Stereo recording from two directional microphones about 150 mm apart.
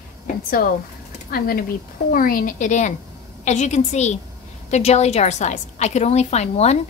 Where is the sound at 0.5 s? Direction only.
75° left (ahead or behind).